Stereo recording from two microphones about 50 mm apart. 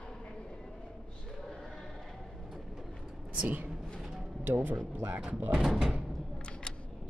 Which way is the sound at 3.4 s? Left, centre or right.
Right.